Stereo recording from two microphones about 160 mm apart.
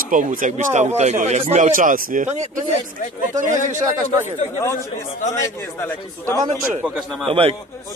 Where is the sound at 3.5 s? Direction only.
50° left (ahead or behind).